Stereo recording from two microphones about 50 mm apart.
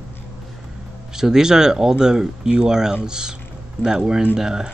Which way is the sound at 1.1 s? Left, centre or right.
Centre.